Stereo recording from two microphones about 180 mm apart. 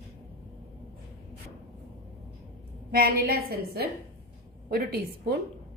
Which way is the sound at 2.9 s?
55° right (ahead or behind).